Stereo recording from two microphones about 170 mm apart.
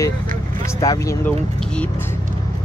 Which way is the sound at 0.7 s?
20° left (ahead or behind).